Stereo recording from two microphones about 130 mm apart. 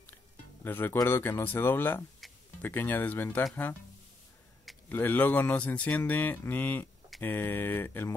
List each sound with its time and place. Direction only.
0.7 s speech: 15° left (ahead or behind)
4.8 s speech: 15° left (ahead or behind)